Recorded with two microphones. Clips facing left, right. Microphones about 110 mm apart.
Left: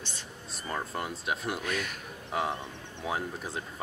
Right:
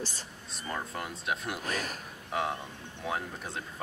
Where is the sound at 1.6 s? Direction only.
40° right (ahead or behind).